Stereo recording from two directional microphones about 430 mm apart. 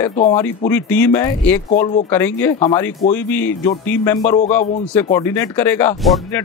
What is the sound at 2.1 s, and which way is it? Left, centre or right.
Speech, centre.